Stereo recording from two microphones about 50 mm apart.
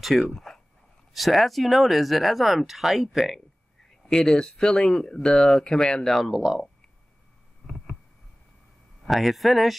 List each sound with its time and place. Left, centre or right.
0.0 s speech: centre
4.1 s speech: centre
6.3 s speech: centre
9.0 s speech: centre